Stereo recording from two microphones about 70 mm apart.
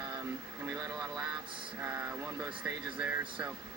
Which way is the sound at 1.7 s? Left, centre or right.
Right.